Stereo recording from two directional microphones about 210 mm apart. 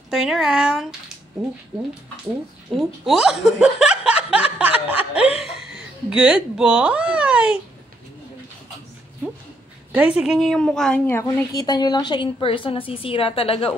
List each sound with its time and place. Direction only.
0.1 s speech: centre (ahead or behind)
2.7 s speech: centre (ahead or behind)
9.9 s a woman's voice: 5° right (ahead or behind); by 13.7 s 25° left (ahead or behind)